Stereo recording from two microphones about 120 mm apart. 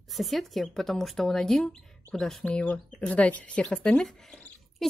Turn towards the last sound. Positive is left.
turn(degrees=5)  # may be behind; listen again after turning